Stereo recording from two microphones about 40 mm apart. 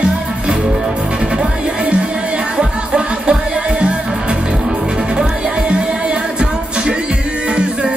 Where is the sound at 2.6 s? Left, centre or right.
Right.